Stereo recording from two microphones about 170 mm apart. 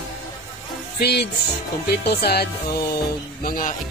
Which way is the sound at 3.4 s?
55° left (ahead or behind).